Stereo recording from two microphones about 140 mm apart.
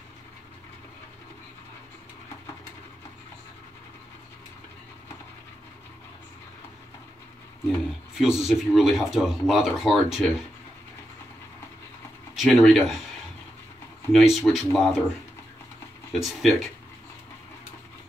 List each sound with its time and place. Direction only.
8.2 s speech: 5° right (ahead or behind)
12.4 s speech: centre (ahead or behind)
14.1 s speech: centre (ahead or behind)
16.1 s speech: centre (ahead or behind)